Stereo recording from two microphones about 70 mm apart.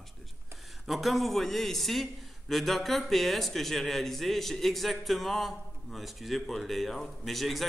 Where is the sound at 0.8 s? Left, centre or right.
Centre.